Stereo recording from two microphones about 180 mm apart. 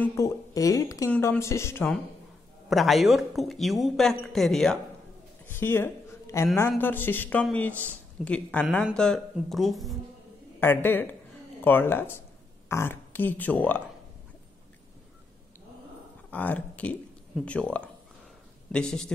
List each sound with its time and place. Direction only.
0.0 s speech: 15° left (ahead or behind)
2.7 s speech: centre (ahead or behind)
5.5 s a woman's voice: 10° left (ahead or behind)
10.6 s speech: 10° left (ahead or behind)
16.3 s speech: 10° left (ahead or behind)